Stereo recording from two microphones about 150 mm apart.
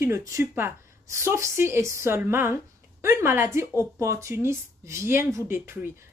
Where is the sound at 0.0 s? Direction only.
20° right (ahead or behind).